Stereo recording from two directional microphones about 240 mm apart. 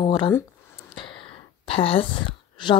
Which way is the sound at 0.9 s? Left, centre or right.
Left.